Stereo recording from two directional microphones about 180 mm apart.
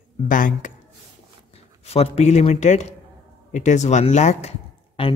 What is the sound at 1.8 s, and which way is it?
Speech, 35° left (ahead or behind).